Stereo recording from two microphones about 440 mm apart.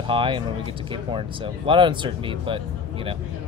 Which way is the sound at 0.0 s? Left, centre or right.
Centre.